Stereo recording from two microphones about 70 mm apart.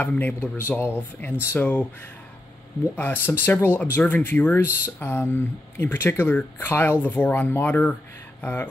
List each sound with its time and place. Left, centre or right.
0.0 s speech: left
3.0 s speech: left